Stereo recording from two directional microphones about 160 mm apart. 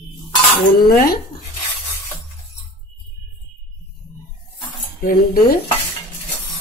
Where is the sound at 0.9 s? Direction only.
70° left (ahead or behind).